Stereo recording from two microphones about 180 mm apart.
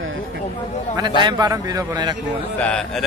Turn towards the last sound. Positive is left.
turn(degrees=5)  # may be behind; listen again after turning